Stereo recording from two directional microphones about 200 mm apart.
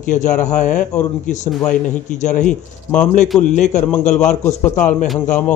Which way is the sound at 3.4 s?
35° left (ahead or behind).